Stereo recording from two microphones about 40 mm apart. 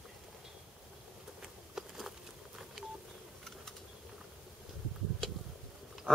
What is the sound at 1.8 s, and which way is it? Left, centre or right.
Bee, centre.